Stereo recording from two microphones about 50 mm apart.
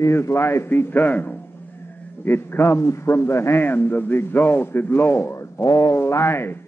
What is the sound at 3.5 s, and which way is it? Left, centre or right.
A man's voice, left.